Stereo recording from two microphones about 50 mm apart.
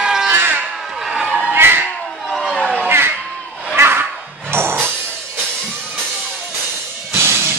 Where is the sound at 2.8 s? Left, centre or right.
Right.